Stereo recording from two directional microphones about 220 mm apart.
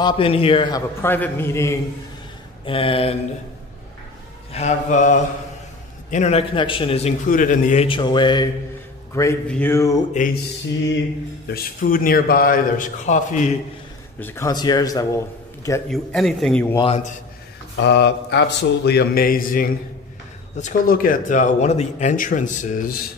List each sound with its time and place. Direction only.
0.0 s a man's voice: 25° left (ahead or behind)
2.6 s a man's voice: 25° left (ahead or behind)
4.5 s a man's voice: 30° left (ahead or behind); by 10.0 s 15° left (ahead or behind)
11.4 s speech: 40° left (ahead or behind)
14.2 s a man's voice: 15° left (ahead or behind)
15.9 s a man's voice: centre (ahead or behind)
16.7 s a man's voice: 25° left (ahead or behind)
17.8 s mantra: 50° left (ahead or behind)
20.5 s speech: 35° left (ahead or behind)